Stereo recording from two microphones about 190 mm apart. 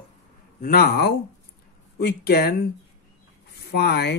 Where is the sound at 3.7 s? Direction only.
60° left (ahead or behind).